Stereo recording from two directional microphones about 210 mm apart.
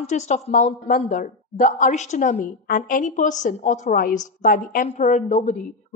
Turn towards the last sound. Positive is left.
turn(degrees=35)  # may be behind; listen again after turning